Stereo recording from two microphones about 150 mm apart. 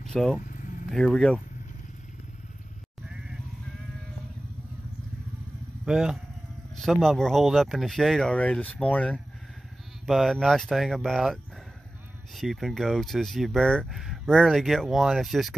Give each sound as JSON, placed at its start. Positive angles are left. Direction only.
{"t": 0.0, "sound": "speech", "side_deg": 5}
{"t": 0.4, "sound": "vehicle", "side_deg": 60}
{"t": 0.8, "sound": "speech", "side_deg": 5}
{"t": 3.1, "sound": "sheep", "side_deg": -5}
{"t": 5.9, "sound": "speech", "side_deg": -5}
{"t": 12.4, "sound": "speech", "side_deg": 0}